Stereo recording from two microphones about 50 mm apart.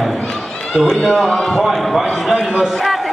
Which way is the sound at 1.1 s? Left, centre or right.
Centre.